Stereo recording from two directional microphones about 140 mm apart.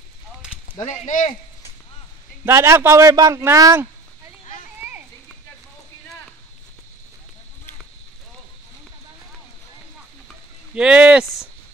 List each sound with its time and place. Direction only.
0.8 s speech: 60° left (ahead or behind)
2.4 s a man's voice: 20° right (ahead or behind)
4.7 s a sound: 10° right (ahead or behind)
10.7 s speech: 5° right (ahead or behind)